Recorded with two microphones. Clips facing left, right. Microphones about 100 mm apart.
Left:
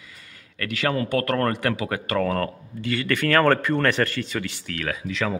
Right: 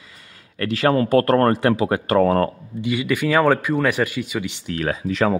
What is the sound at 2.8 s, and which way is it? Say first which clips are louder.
Speech: right 3 dB; 15° right (ahead or behind).